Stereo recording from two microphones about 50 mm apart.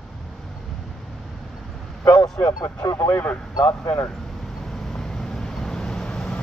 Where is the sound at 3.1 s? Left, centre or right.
Left.